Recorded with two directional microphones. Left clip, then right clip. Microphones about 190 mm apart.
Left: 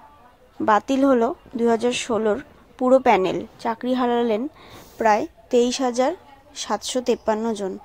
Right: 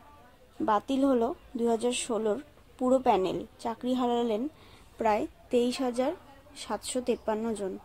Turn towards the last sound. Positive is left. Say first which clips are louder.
# left 8 dB
turn(degrees=15)  # may be behind; listen again after turning